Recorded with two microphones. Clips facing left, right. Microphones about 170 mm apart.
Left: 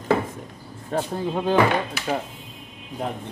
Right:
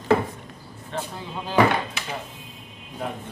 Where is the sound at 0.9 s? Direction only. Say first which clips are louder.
Left 8 dB; 50° left (ahead or behind).